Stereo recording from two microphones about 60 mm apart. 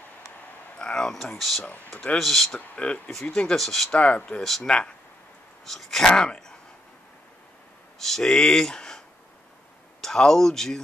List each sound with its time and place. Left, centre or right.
0.7 s a sound: centre
2.1 s speech: centre
2.7 s speech: centre
3.9 s speech: left
4.4 s speech: centre
4.6 s speech: centre
5.7 s speech: centre
8.0 s speech: centre
10.0 s speech: centre